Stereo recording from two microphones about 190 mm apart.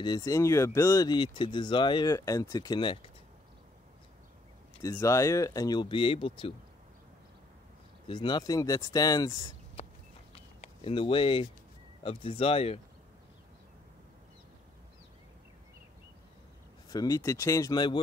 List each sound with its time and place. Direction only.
0.0 s speech: 20° left (ahead or behind)
4.8 s speech: 15° left (ahead or behind)
8.1 s speech: 25° left (ahead or behind)
10.3 s a sound: 30° left (ahead or behind)
12.0 s speech: 30° left (ahead or behind)
16.9 s speech: 20° left (ahead or behind)